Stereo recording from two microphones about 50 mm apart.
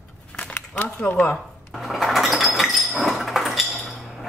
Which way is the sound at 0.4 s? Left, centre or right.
Left.